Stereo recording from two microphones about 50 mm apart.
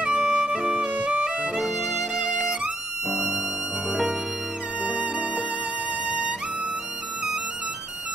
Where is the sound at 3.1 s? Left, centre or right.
Centre.